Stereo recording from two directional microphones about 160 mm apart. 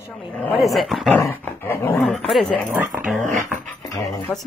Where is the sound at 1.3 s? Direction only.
15° left (ahead or behind).